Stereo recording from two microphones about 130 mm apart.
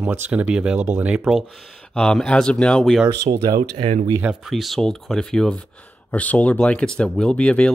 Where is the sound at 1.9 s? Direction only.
5° left (ahead or behind).